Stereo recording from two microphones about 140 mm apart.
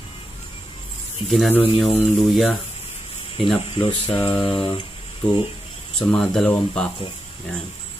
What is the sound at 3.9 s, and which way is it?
Mantra, 45° left (ahead or behind).